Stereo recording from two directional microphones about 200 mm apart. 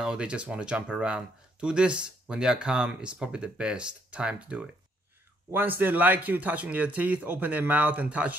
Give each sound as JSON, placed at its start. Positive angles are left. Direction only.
{"t": 0.0, "sound": "speech", "side_deg": -5}